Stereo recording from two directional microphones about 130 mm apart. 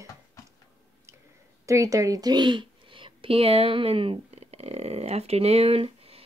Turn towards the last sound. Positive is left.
turn(degrees=-50)  # may be behind; listen again after turning